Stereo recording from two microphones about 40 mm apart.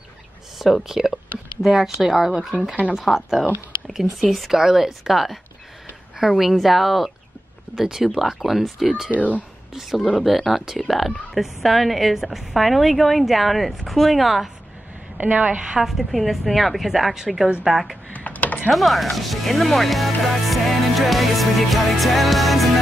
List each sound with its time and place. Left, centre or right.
0.6 s speech: centre
4.6 s speech: centre
15.1 s a woman's voice: right
15.7 s speech: centre
18.1 s typing: left
18.7 s speech: centre